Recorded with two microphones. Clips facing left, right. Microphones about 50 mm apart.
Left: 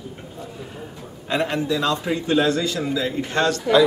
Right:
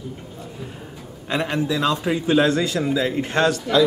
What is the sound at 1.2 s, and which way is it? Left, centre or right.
A man's voice, centre.